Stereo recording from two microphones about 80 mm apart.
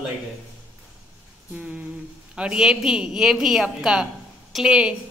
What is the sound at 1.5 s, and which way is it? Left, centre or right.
A woman's voice, centre.